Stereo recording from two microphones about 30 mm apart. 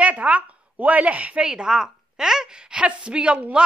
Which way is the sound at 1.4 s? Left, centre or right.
Right.